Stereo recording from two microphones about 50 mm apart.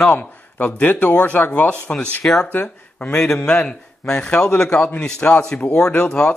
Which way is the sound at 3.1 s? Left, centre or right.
Centre.